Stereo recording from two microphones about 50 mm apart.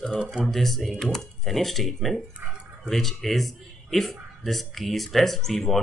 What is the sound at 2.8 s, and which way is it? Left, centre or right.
Speech, centre.